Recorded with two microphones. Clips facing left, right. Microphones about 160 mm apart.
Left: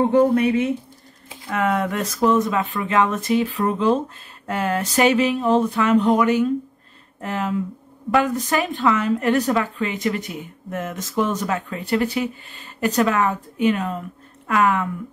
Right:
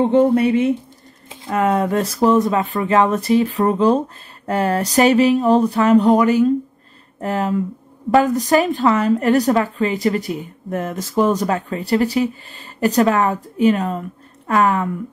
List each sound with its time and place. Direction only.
0.0 s a woman's voice: 25° right (ahead or behind)